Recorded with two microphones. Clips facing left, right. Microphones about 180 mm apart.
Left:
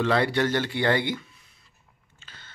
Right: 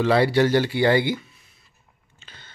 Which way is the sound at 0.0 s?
5° right (ahead or behind).